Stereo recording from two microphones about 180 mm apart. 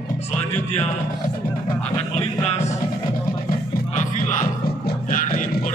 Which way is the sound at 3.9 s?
45° left (ahead or behind).